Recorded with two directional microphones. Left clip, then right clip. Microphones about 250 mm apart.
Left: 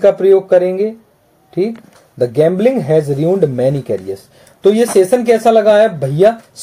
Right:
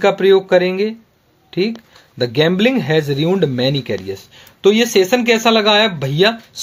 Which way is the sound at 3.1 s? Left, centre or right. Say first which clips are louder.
Left 3 dB; centre.